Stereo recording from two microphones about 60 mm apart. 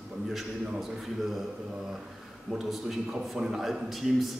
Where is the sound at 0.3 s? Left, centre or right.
Centre.